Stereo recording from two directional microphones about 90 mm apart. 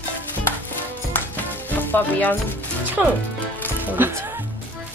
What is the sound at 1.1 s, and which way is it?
Music, 20° left (ahead or behind).